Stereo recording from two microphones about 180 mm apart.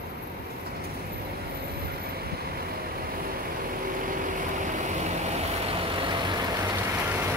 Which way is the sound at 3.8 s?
50° right (ahead or behind).